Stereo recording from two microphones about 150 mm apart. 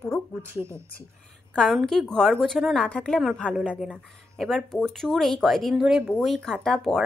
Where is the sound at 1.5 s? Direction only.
5° left (ahead or behind).